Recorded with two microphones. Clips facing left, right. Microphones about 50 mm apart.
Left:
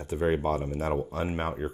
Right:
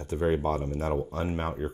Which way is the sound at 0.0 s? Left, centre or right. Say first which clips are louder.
Even; centre.